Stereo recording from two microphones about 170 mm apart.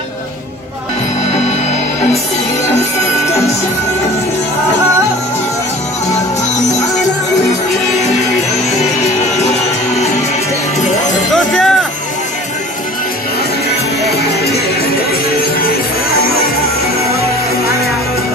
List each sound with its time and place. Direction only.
11.3 s music: centre (ahead or behind)
14.1 s music: 70° left (ahead or behind)